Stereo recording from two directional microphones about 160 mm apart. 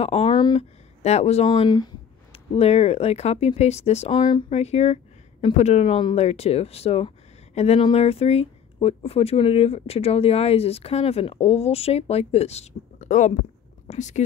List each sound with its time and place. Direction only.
0.0 s speech: 35° left (ahead or behind)
1.0 s speech: 40° left (ahead or behind)
1.5 s speech: 25° left (ahead or behind)
2.3 s speech: 40° left (ahead or behind)
4.2 s speech: 30° left (ahead or behind); by 14.2 s 50° left (ahead or behind)